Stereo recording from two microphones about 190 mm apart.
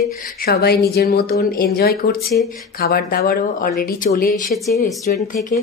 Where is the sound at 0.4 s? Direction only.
55° left (ahead or behind).